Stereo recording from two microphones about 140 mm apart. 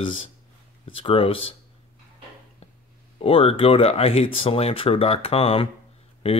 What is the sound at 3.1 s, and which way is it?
Speech, 45° left (ahead or behind).